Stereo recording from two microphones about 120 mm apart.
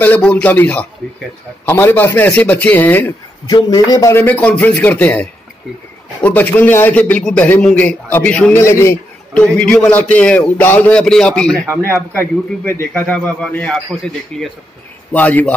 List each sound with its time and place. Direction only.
0.0 s a man's voice: 10° left (ahead or behind)
3.4 s a man's voice: 35° left (ahead or behind)
4.1 s a man's voice: 15° left (ahead or behind)
8.5 s speech: 25° left (ahead or behind)
9.3 s a man's voice: 5° left (ahead or behind)
12.2 s a man's voice: 20° left (ahead or behind)